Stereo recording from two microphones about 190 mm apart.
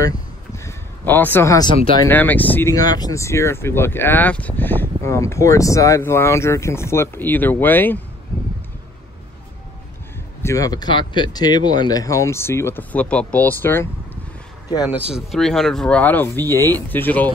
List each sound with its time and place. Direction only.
0.7 s a man's voice: 10° left (ahead or behind)
10.4 s speech: 15° left (ahead or behind)
15.0 s speech: centre (ahead or behind)